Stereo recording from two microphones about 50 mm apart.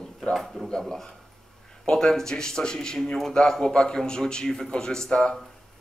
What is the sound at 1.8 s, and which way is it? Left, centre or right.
A man's voice, centre.